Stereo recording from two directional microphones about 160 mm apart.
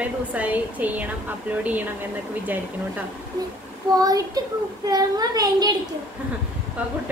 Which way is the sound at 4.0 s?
25° right (ahead or behind).